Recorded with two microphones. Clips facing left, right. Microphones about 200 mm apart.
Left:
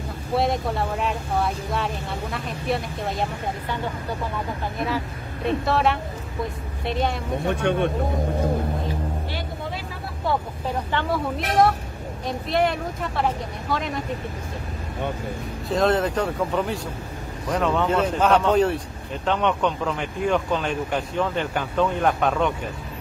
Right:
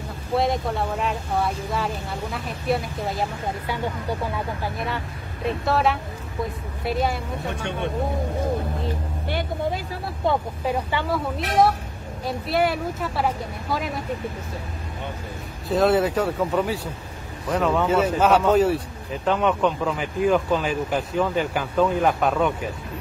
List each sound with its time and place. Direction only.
0.4 s speech: centre (ahead or behind)
4.7 s a woman's voice: centre (ahead or behind)
7.6 s speech: 55° left (ahead or behind)
10.2 s speech: 10° right (ahead or behind)
15.7 s speech: 5° right (ahead or behind)